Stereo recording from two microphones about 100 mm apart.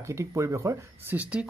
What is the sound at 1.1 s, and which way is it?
Speech, 15° right (ahead or behind).